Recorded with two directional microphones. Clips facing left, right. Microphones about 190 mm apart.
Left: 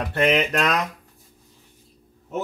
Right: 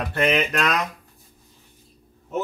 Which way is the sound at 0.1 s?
25° left (ahead or behind).